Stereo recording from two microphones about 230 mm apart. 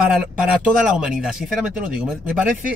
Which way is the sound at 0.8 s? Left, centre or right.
Centre.